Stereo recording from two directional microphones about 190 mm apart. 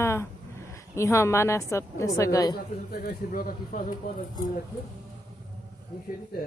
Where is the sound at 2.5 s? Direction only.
55° left (ahead or behind).